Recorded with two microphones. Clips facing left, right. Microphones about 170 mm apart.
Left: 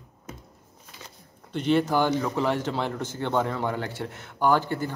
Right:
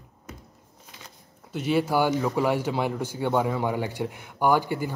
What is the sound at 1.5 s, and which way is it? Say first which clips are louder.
Speech: left 1 dB; 5° right (ahead or behind).